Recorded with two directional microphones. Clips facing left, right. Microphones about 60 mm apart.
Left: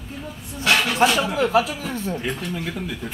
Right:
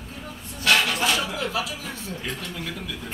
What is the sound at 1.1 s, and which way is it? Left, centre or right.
Speech, left.